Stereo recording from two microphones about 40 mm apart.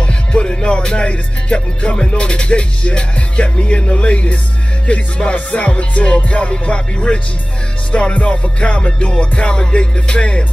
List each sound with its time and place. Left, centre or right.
0.0 s music: left